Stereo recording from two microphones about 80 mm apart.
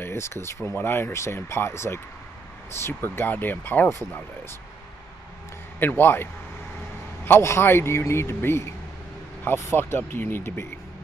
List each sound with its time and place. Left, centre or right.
0.0 s a man's voice: left
5.8 s speech: left
7.2 s a man's voice: left